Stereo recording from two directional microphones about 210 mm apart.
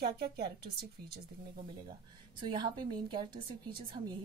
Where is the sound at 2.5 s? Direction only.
20° right (ahead or behind).